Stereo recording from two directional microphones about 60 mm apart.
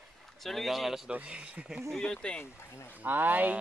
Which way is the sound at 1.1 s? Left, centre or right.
Right.